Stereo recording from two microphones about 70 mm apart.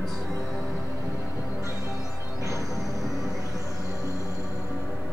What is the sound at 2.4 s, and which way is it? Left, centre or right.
Music, left.